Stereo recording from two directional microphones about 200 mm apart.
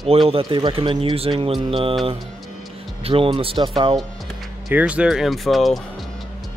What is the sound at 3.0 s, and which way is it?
Speech, 25° right (ahead or behind).